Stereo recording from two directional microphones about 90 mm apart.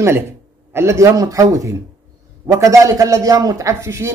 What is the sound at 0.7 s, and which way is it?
Speech, 30° right (ahead or behind).